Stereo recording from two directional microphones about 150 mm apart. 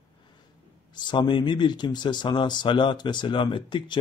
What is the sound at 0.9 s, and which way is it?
Speech, 30° left (ahead or behind).